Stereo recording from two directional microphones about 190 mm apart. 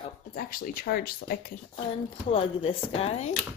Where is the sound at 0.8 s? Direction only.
60° left (ahead or behind).